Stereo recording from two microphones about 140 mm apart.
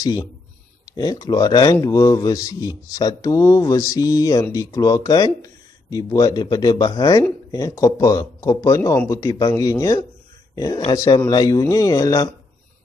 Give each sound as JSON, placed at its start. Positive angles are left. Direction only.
{"t": 0.0, "sound": "speech", "side_deg": 25}